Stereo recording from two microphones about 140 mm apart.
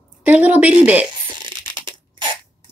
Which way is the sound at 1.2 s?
35° right (ahead or behind).